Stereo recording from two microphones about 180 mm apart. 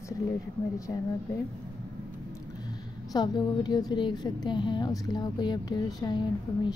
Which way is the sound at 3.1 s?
25° left (ahead or behind).